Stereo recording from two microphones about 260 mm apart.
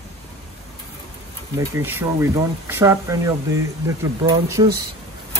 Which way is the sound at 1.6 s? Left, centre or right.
Centre.